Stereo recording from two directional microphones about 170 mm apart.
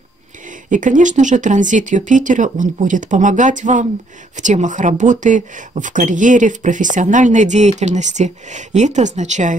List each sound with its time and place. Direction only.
0.7 s speech: 50° right (ahead or behind)